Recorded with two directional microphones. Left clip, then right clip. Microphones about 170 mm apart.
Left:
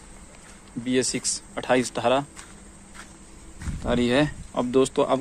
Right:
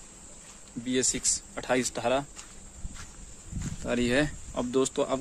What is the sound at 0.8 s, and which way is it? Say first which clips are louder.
Speech: left 4 dB; 10° right (ahead or behind).